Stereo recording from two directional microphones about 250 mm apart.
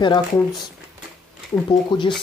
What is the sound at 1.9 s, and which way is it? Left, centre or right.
Speech, centre.